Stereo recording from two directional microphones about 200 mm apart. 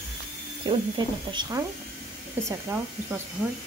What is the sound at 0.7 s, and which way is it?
Speech, 25° right (ahead or behind).